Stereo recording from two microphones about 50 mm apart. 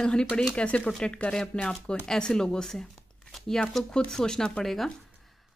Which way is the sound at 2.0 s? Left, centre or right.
Centre.